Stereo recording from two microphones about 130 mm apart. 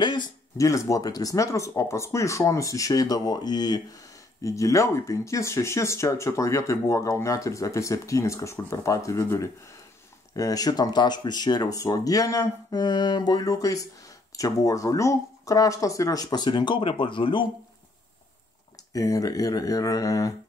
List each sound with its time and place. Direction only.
0.0 s a sound: 35° left (ahead or behind)
0.6 s speech: 25° left (ahead or behind)
18.9 s speech: 25° left (ahead or behind)